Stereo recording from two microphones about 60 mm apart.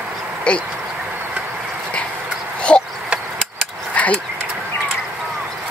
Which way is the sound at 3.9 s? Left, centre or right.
Left.